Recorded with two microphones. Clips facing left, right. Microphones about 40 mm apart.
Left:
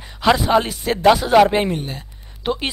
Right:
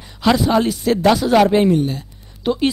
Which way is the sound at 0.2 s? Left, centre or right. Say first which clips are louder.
Even; centre.